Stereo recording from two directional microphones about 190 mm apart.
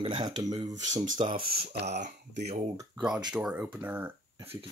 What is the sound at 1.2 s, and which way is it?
Speech, 30° right (ahead or behind).